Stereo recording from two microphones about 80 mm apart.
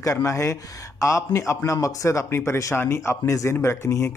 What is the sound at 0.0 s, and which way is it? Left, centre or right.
Speech, left.